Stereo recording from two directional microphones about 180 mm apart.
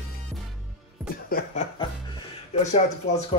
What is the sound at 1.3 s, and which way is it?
Chuckle, 45° left (ahead or behind).